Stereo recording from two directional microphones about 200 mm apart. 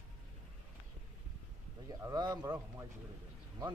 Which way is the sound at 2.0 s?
20° right (ahead or behind).